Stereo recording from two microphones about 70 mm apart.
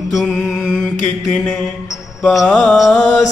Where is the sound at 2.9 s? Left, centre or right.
Centre.